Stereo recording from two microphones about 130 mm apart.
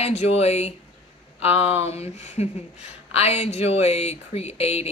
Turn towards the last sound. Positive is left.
turn(degrees=50)  # may be behind; listen again after turning